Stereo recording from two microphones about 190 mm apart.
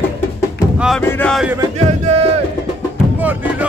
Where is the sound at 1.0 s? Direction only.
10° left (ahead or behind).